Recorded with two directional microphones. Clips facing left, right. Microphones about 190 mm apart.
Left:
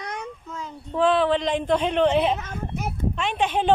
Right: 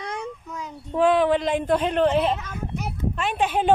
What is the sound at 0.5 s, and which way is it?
A woman's voice, 15° right (ahead or behind).